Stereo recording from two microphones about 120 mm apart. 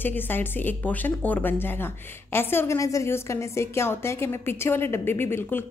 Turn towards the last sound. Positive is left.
turn(degrees=20)  # may be behind; listen again after turning